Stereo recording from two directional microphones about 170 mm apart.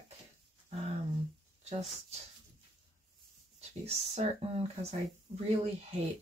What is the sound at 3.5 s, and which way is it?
Speech, 40° right (ahead or behind).